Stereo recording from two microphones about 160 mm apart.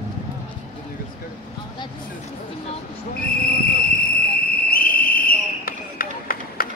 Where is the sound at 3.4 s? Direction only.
70° left (ahead or behind).